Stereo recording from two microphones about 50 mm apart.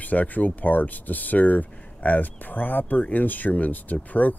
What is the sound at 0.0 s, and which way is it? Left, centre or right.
Speech, left.